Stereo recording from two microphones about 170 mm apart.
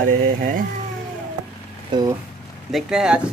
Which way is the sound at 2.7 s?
5° right (ahead or behind).